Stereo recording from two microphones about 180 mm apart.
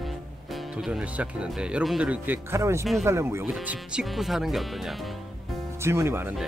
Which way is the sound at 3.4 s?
5° right (ahead or behind).